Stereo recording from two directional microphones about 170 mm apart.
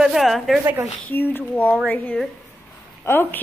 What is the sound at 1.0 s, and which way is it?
A woman's voice, 10° left (ahead or behind).